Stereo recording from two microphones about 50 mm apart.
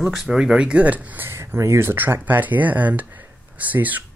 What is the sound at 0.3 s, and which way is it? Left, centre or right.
Speech, centre.